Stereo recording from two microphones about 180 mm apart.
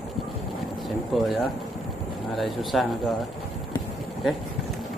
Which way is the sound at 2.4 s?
Centre (ahead or behind).